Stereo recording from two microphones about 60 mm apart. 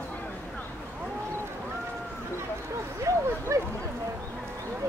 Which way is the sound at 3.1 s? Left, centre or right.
Right.